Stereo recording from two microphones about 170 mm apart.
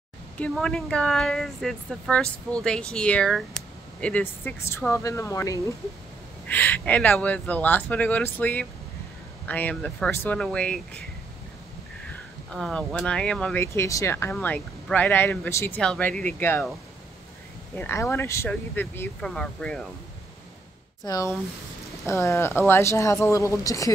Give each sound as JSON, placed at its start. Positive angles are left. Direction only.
{"t": 0.4, "sound": "speech", "side_deg": 5}
{"t": 12.4, "sound": "speech", "side_deg": 5}
{"t": 17.7, "sound": "speech", "side_deg": 15}
{"t": 21.0, "sound": "speech", "side_deg": 20}